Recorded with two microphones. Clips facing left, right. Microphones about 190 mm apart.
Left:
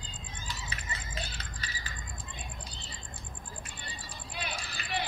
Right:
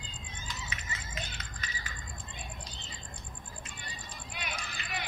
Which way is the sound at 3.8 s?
30° left (ahead or behind).